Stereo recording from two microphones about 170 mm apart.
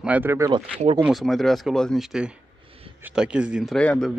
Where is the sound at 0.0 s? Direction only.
10° right (ahead or behind).